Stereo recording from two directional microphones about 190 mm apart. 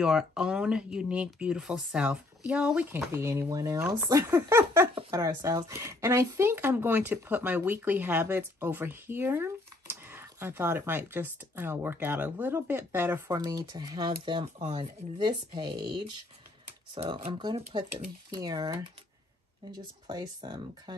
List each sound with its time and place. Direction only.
0.0 s speech: 5° right (ahead or behind); by 20.9 s 20° right (ahead or behind)